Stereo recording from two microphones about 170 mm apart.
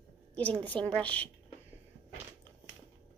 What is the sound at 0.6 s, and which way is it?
Speech, 5° left (ahead or behind).